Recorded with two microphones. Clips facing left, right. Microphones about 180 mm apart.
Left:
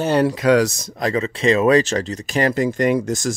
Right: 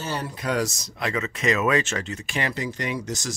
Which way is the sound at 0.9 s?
35° left (ahead or behind).